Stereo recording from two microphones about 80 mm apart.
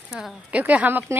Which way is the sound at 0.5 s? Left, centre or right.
Centre.